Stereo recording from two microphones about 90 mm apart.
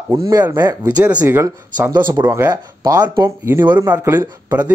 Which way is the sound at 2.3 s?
30° right (ahead or behind).